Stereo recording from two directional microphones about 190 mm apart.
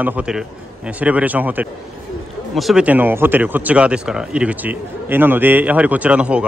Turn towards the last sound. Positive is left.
turn(degrees=-5)  # may be behind; listen again after turning